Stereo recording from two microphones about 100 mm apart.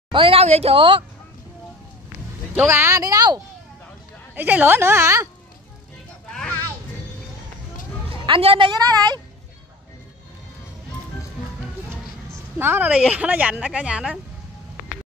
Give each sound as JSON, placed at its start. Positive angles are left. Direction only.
{"t": 0.1, "sound": "a woman's voice", "side_deg": -65}
{"t": 2.5, "sound": "a woman's voice", "side_deg": -25}
{"t": 3.0, "sound": "speech", "side_deg": -40}
{"t": 4.4, "sound": "a woman's voice", "side_deg": -20}
{"t": 8.1, "sound": "a woman's voice", "side_deg": -65}
{"t": 8.8, "sound": "speech", "side_deg": -40}
{"t": 12.5, "sound": "speech", "side_deg": -20}